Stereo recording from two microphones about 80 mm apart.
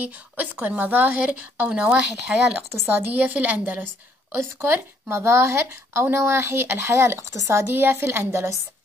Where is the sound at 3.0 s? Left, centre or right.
Right.